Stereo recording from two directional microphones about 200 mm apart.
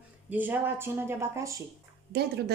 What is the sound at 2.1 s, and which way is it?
Speech, 55° right (ahead or behind).